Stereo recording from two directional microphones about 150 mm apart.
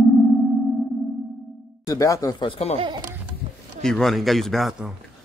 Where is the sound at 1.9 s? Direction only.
20° left (ahead or behind).